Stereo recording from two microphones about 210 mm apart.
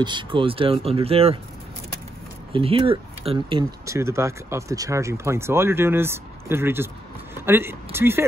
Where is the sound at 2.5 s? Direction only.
25° right (ahead or behind).